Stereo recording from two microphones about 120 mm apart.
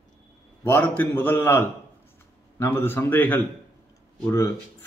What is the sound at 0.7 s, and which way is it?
A man's voice, 15° left (ahead or behind).